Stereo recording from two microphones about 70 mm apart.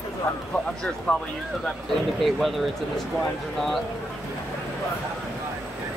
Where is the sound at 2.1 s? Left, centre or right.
Centre.